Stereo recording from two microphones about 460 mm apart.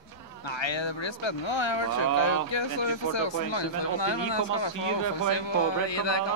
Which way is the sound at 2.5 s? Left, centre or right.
Left.